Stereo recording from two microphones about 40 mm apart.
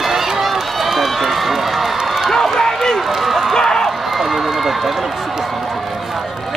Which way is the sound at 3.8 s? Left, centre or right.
Centre.